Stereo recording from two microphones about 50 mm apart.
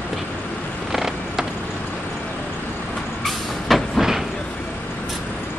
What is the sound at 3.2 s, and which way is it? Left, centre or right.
Vehicle, centre.